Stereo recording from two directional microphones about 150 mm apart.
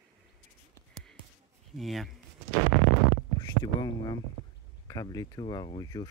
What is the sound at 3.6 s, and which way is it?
Speech, 25° left (ahead or behind).